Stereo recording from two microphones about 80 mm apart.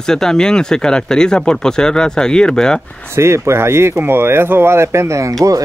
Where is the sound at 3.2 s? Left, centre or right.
Right.